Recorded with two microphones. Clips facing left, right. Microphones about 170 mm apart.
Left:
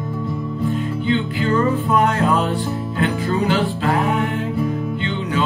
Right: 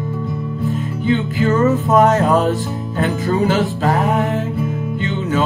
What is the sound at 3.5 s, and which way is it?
Music, 40° right (ahead or behind).